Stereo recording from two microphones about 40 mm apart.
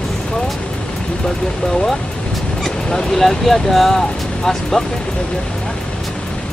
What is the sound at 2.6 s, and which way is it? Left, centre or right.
Speech, centre.